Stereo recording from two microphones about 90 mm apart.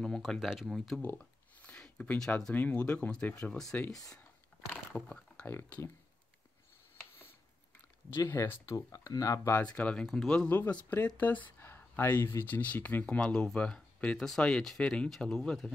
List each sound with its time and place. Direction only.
0.0 s speech: 5° left (ahead or behind)
1.0 s a sound: 15° left (ahead or behind)
2.5 s speech: 20° left (ahead or behind)
4.9 s speech: 15° left (ahead or behind)
8.3 s speech: 25° left (ahead or behind)
8.6 s speech: 40° left (ahead or behind)
9.8 s speech: 15° left (ahead or behind)